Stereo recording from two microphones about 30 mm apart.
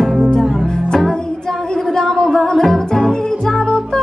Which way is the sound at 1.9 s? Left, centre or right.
Left.